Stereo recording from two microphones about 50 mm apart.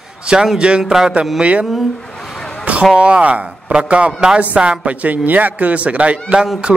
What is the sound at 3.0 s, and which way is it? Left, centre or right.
A man's voice, right.